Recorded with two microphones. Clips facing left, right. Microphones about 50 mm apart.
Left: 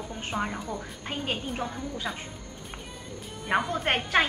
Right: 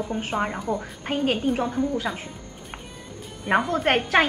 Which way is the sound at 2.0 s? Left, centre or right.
Centre.